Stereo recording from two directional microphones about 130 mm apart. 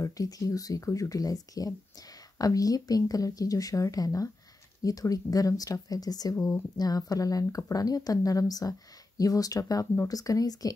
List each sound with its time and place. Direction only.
0.0 s speech: 25° left (ahead or behind)
6.3 s speech: 15° left (ahead or behind)
6.8 s speech: 30° left (ahead or behind)